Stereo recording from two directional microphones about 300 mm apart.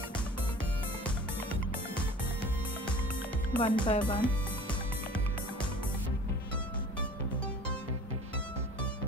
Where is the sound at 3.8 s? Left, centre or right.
Centre.